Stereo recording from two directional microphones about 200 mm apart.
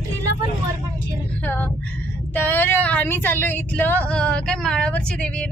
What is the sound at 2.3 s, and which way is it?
Speech, 10° left (ahead or behind).